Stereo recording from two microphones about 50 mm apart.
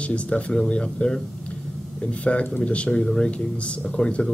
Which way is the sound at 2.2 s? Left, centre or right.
Left.